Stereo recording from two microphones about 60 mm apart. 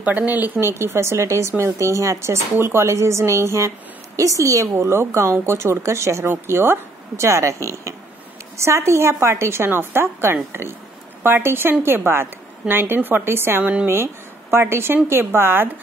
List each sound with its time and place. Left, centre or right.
0.0 s speech: right
0.6 s speech: right
2.5 s speech: right
4.2 s a woman's voice: right
4.7 s a woman's voice: right